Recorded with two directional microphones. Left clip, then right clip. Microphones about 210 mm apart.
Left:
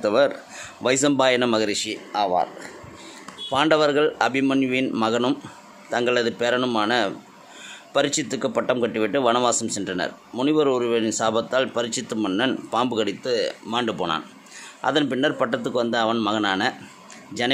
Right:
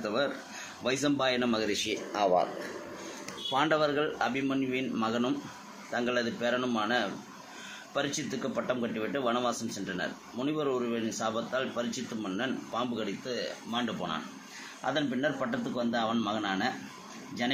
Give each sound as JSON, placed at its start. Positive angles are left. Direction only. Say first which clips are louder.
{"t": 0.0, "sound": "a man's voice", "louder": "left 12 dB", "side_deg": 55}
{"t": 3.5, "sound": "a man's voice", "louder": "left 9 dB", "side_deg": 55}